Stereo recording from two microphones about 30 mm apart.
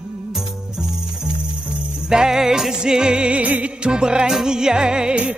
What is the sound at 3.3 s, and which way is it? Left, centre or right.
Music, right.